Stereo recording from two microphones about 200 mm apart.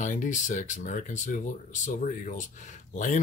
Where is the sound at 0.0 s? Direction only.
40° left (ahead or behind).